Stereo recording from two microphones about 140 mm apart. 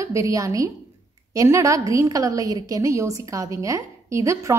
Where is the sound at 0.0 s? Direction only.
20° right (ahead or behind).